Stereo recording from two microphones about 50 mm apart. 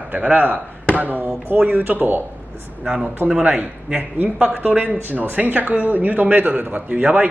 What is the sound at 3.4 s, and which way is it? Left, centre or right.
Speech, right.